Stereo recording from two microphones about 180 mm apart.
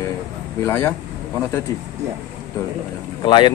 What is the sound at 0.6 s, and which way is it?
Speech, 15° left (ahead or behind).